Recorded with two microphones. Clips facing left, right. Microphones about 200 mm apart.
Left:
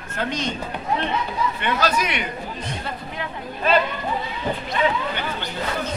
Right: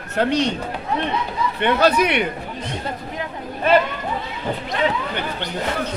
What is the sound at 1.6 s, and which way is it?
Speech, 60° right (ahead or behind).